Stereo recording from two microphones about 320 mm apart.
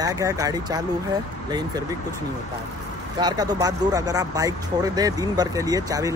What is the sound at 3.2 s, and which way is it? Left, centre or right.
Speech, centre.